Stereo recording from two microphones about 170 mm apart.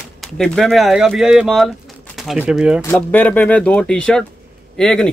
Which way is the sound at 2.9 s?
10° left (ahead or behind).